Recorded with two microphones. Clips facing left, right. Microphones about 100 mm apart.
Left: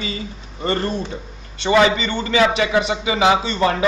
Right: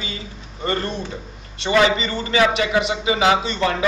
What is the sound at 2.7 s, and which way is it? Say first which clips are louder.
A man's voice: left 1 dB; 30° left (ahead or behind).